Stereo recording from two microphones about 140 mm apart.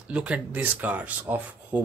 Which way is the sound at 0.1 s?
10° right (ahead or behind).